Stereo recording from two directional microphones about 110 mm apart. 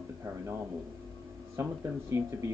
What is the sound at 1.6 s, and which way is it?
Speech, 25° right (ahead or behind).